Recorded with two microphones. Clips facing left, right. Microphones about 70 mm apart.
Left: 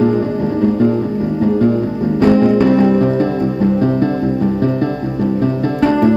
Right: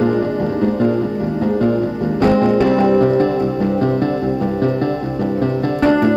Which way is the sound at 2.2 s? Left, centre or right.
Right.